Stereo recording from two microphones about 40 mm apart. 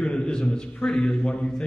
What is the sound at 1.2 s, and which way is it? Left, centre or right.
Mantra, left.